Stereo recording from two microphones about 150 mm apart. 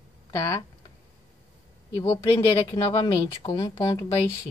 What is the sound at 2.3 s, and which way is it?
Speech, 30° left (ahead or behind).